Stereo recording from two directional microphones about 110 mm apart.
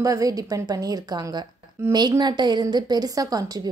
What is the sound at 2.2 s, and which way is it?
A woman's voice, 40° right (ahead or behind).